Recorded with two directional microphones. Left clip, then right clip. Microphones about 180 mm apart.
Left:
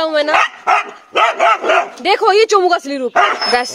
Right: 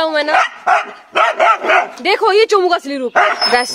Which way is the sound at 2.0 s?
5° left (ahead or behind).